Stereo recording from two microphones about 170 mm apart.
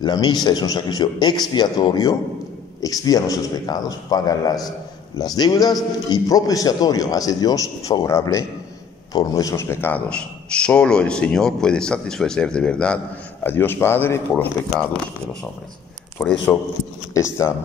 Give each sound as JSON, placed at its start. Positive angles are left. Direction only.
{"t": 0.0, "sound": "a man's voice", "side_deg": 25}
{"t": 16.2, "sound": "a man's voice", "side_deg": 10}